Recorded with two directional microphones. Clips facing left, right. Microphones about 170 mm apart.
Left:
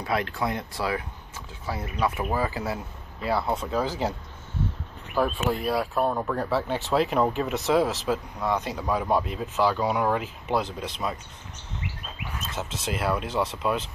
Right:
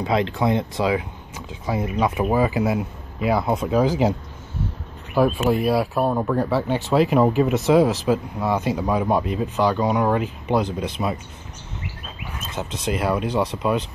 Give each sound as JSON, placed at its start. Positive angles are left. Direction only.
{"t": 0.0, "sound": "speech", "side_deg": -20}
{"t": 5.2, "sound": "speech", "side_deg": -10}
{"t": 12.4, "sound": "speech", "side_deg": 0}